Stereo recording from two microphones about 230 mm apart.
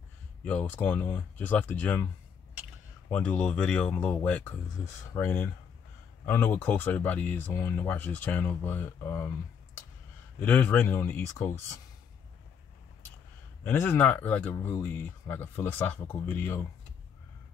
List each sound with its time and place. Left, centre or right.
0.5 s speech: centre
3.1 s speech: centre
10.4 s speech: centre
13.7 s speech: centre